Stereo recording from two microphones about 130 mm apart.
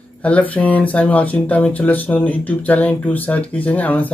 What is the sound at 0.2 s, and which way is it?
Speech, 10° left (ahead or behind).